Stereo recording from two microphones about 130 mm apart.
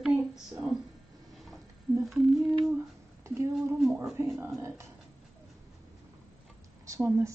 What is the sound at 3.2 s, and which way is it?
A woman's voice, 20° right (ahead or behind).